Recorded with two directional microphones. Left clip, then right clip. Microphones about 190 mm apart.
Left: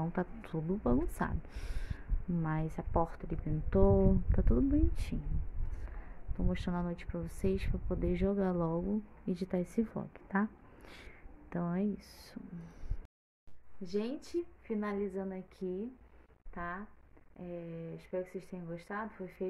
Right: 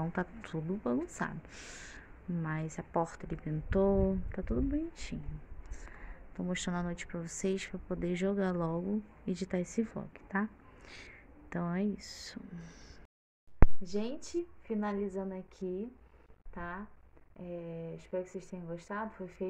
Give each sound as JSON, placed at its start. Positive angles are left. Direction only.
{"t": 0.0, "sound": "a woman's voice", "side_deg": 10}
{"t": 5.9, "sound": "speech", "side_deg": 10}
{"t": 11.6, "sound": "speech", "side_deg": 5}
{"t": 13.8, "sound": "speech", "side_deg": 0}